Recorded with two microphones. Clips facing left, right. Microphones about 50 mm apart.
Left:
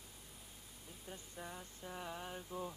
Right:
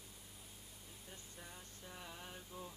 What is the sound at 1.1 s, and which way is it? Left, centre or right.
Music, centre.